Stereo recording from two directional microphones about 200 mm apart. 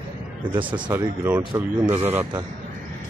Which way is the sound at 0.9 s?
10° right (ahead or behind).